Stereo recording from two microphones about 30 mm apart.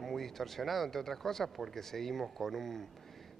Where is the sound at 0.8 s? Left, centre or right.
Centre.